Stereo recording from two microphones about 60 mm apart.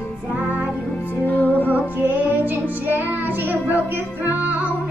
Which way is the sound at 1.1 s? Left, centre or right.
Left.